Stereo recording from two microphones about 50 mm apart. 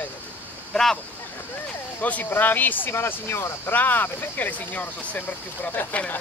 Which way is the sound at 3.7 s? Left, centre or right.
Left.